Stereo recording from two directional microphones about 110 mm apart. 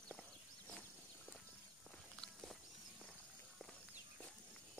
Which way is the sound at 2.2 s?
5° left (ahead or behind).